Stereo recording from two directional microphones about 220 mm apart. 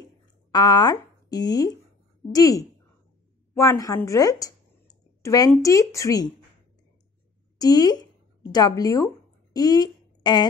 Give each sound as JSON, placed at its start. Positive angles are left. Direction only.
{"t": 0.5, "sound": "speech", "side_deg": 20}
{"t": 7.5, "sound": "speech", "side_deg": 15}